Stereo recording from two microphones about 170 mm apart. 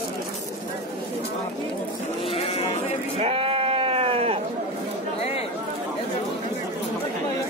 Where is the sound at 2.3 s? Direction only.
35° left (ahead or behind).